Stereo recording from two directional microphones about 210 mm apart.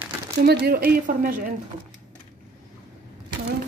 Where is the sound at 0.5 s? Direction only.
45° right (ahead or behind).